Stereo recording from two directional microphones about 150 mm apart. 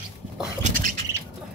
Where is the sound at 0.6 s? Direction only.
60° right (ahead or behind).